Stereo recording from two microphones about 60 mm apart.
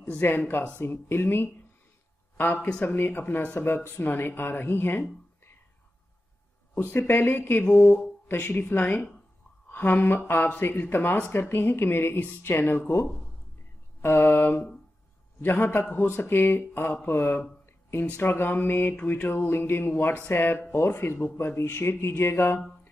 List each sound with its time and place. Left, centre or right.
0.0 s a man's voice: left
6.8 s speech: left
14.3 s mantra: left
15.4 s speech: left
19.2 s speech: left